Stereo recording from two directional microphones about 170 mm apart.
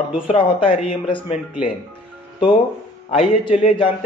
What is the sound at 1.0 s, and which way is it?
Speech, 35° left (ahead or behind).